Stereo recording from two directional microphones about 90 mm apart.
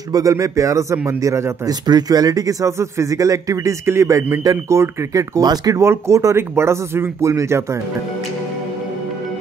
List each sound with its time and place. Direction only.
0.1 s speech: 40° right (ahead or behind)
1.7 s speech: 50° right (ahead or behind)
5.8 s speech: 30° right (ahead or behind)